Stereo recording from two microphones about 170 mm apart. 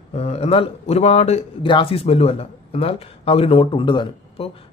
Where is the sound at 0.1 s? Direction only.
40° left (ahead or behind).